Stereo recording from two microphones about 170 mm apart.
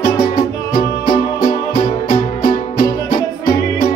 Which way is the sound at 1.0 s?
55° left (ahead or behind).